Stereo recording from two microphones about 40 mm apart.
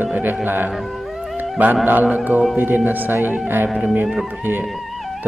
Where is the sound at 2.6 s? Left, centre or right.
Right.